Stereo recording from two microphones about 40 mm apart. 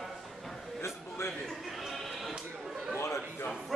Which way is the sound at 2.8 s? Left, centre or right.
Centre.